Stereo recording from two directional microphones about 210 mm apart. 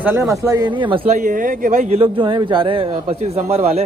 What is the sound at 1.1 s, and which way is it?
A man's voice, 40° right (ahead or behind).